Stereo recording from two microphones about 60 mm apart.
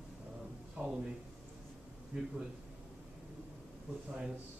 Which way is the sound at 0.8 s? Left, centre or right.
Right.